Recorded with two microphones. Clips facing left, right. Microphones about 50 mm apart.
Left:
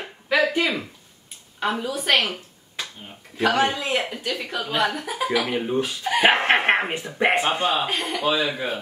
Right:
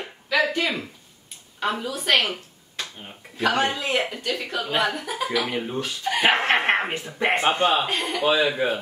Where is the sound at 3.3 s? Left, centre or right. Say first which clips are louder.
Left 2 dB; centre.